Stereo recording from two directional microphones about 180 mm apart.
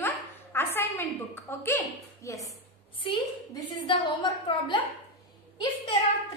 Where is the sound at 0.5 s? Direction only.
10° left (ahead or behind).